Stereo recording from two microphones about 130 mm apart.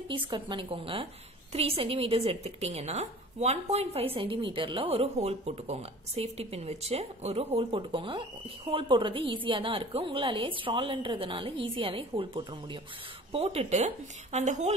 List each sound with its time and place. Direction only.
0.1 s a woman's voice: 40° right (ahead or behind); by 14.7 s 60° right (ahead or behind)